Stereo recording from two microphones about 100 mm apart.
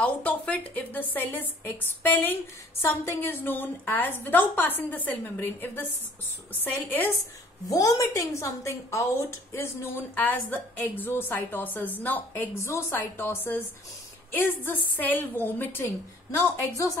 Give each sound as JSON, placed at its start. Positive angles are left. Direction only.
{"t": 0.0, "sound": "a woman's voice", "side_deg": 15}
{"t": 7.7, "sound": "a woman's voice", "side_deg": 35}